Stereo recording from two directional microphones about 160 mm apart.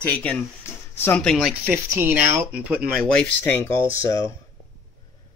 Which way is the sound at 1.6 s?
10° right (ahead or behind).